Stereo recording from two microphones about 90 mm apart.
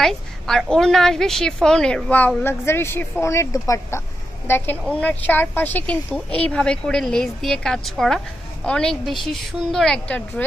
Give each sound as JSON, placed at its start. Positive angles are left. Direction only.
{"t": 0.0, "sound": "a woman's voice", "side_deg": 5}
{"t": 2.6, "sound": "a woman's voice", "side_deg": 30}
{"t": 4.5, "sound": "a woman's voice", "side_deg": 25}